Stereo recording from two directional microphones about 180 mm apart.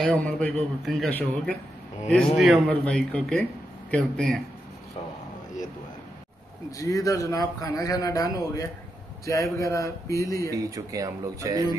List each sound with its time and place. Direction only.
0.0 s a man's voice: 5° left (ahead or behind)
6.8 s a man's voice: 20° left (ahead or behind)
10.5 s speech: 20° right (ahead or behind)